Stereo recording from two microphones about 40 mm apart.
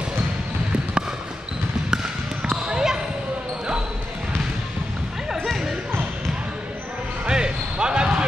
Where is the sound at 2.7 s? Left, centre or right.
Centre.